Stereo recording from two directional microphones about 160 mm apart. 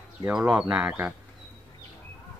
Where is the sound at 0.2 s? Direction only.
10° right (ahead or behind).